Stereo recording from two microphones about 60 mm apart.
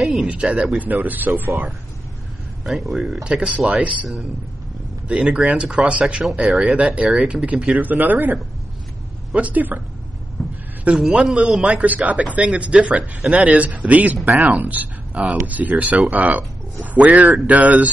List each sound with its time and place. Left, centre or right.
0.0 s a sound: centre
0.3 s speech: centre
0.7 s speech: right
2.6 s speech: centre
3.3 s speech: centre
5.0 s speech: centre
6.4 s speech: centre
6.8 s speech: centre
7.8 s speech: right
11.0 s speech: centre
11.8 s speech: right